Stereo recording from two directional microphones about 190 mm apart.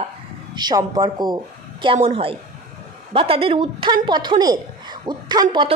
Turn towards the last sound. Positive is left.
turn(degrees=-20)  # may be behind; listen again after turning